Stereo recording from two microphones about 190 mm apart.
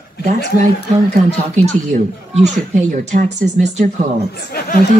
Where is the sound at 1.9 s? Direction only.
40° right (ahead or behind).